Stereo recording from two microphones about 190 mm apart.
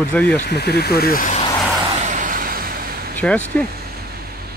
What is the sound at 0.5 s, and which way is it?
Speech, 60° left (ahead or behind).